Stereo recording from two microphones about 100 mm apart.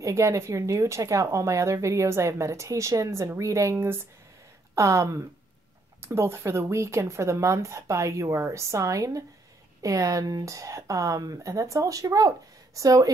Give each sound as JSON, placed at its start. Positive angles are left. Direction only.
{"t": 0.0, "sound": "speech", "side_deg": -30}